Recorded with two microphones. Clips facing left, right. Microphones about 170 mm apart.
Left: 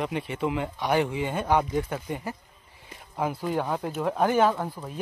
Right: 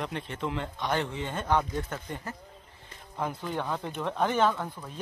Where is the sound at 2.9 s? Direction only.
10° left (ahead or behind).